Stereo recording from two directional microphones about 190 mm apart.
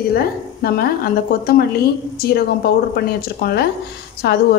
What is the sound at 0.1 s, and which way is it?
Speech, 55° left (ahead or behind).